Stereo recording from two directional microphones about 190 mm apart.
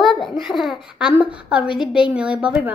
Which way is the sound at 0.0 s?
Centre (ahead or behind).